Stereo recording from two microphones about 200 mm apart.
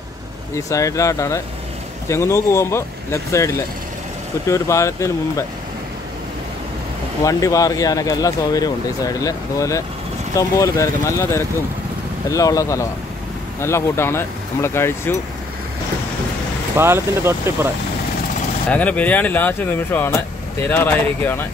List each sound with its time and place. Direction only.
0.6 s speech: 15° left (ahead or behind)
7.2 s speech: 15° left (ahead or behind)
16.7 s speech: 10° right (ahead or behind)
18.7 s speech: 5° left (ahead or behind)